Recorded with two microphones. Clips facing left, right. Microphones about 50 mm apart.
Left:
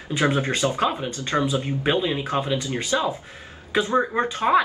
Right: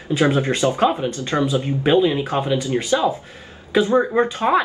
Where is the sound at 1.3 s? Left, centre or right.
Left.